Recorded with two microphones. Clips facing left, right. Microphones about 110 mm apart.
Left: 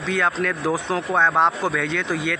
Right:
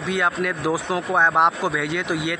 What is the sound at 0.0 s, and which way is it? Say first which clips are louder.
Speech: even; 15° right (ahead or behind).